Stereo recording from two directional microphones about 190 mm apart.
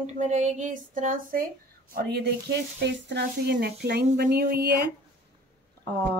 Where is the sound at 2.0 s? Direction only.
55° right (ahead or behind).